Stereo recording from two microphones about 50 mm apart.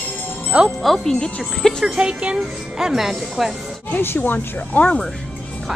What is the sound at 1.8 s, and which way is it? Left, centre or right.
Speech, centre.